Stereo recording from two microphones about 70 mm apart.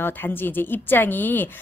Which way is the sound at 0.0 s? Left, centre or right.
Left.